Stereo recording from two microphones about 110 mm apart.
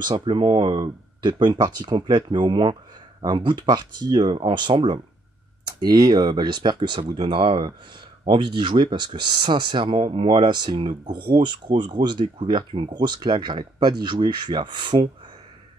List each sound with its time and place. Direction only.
0.0 s speech: 45° right (ahead or behind)
5.8 s speech: 40° right (ahead or behind)